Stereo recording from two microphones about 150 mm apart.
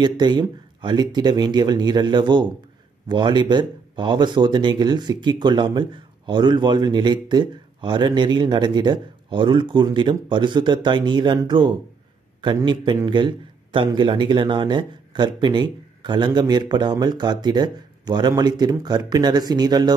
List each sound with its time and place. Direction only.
0.0 s a man's voice: 30° right (ahead or behind)